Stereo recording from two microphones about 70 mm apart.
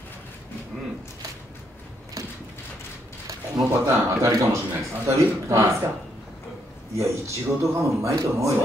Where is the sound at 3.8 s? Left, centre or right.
Right.